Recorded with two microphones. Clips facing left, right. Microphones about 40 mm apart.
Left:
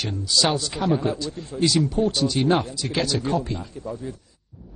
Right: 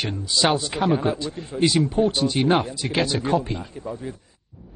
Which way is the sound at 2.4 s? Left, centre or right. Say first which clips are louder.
Right 1 dB; centre.